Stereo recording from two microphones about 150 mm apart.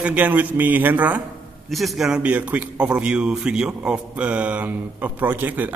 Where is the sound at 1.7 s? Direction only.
Centre (ahead or behind).